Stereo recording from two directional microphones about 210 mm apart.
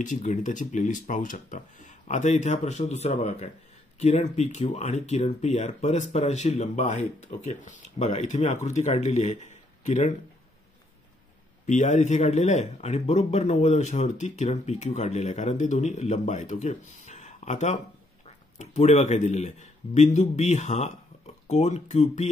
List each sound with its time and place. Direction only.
0.0 s speech: 35° left (ahead or behind)
11.6 s speech: 35° left (ahead or behind)